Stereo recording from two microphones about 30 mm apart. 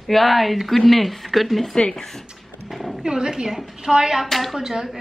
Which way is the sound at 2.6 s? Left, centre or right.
Centre.